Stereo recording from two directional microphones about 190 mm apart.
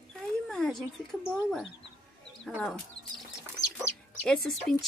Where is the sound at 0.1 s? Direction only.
5° left (ahead or behind).